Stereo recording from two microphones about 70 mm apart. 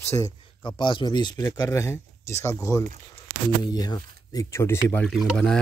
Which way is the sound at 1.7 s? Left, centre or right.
Left.